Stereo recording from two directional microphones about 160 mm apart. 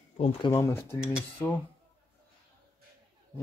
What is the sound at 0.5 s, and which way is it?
Speech, 15° left (ahead or behind).